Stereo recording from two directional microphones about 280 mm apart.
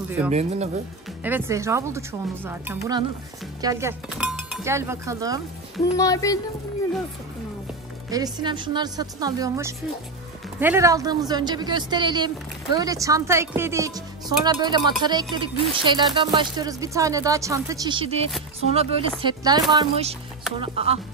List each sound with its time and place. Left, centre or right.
0.3 s speech: right
1.2 s speech: centre
5.9 s speech: centre
8.1 s speech: centre